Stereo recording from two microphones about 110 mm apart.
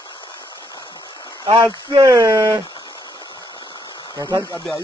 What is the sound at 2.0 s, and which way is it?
Speech, 30° right (ahead or behind).